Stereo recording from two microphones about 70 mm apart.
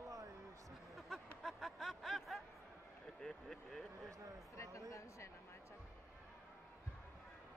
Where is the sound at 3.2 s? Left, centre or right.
Centre.